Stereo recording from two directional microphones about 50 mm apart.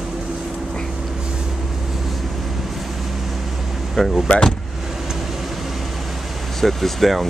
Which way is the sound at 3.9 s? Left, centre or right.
Centre.